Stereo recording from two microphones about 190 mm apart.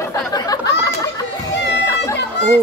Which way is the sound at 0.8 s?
20° left (ahead or behind).